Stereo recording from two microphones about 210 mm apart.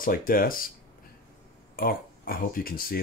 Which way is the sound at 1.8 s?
45° left (ahead or behind).